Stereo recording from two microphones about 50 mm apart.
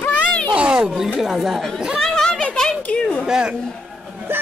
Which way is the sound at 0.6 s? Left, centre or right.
Right.